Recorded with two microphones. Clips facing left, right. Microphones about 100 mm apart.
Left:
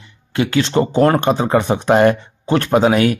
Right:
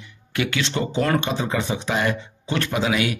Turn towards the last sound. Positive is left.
turn(degrees=45)  # may be behind; listen again after turning